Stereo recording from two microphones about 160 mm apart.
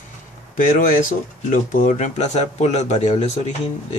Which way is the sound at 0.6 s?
55° left (ahead or behind).